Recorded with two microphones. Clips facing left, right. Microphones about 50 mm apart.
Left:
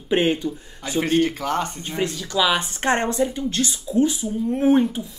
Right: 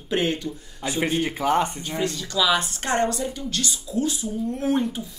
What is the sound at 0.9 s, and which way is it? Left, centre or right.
Speech, centre.